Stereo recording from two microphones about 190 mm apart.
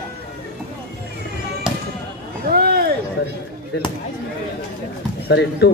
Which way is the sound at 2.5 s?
55° right (ahead or behind).